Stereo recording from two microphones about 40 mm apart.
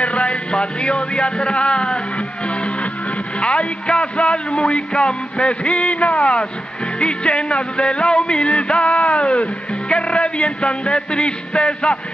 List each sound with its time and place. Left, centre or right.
0.0 s music: left